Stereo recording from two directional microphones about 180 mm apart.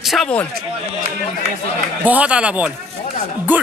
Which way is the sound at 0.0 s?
Centre (ahead or behind).